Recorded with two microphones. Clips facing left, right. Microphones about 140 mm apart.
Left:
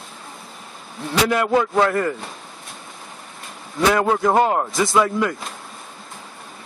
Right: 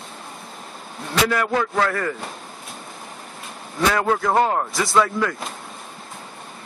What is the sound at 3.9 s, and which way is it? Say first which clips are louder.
Speech: left 3 dB; 15° left (ahead or behind).